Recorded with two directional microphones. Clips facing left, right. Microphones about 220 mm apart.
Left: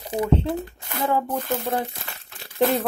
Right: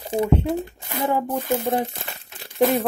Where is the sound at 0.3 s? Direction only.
20° right (ahead or behind).